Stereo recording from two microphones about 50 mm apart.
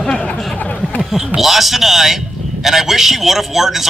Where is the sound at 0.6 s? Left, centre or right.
Left.